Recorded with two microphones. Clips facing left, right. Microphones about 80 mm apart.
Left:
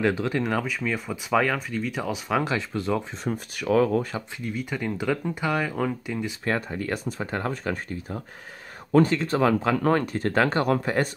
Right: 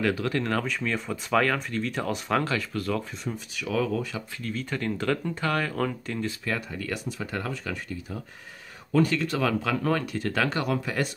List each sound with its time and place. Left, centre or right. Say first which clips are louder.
0.0 s speech: left 2 dB; left; by 2.4 s centre
2.4 s speech: left 2 dB; left
3.3 s speech: left 6 dB; left
4.4 s speech: even; centre
6.4 s speech: left 4 dB; left
9.0 s speech: left 4 dB; left